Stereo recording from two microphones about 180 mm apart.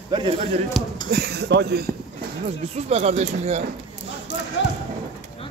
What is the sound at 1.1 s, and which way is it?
Speech, 65° right (ahead or behind).